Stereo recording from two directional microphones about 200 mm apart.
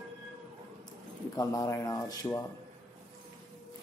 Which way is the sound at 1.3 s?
15° left (ahead or behind).